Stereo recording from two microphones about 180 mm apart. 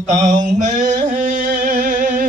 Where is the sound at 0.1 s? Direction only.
40° right (ahead or behind).